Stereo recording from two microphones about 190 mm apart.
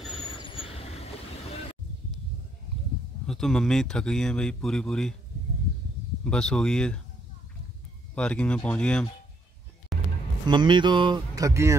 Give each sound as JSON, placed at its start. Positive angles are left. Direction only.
{"t": 0.2, "sound": "vehicle", "side_deg": 25}
{"t": 3.3, "sound": "speech", "side_deg": 0}
{"t": 6.2, "sound": "speech", "side_deg": 5}
{"t": 8.1, "sound": "speech", "side_deg": 5}
{"t": 9.9, "sound": "vehicle", "side_deg": 0}
{"t": 10.4, "sound": "speech", "side_deg": -25}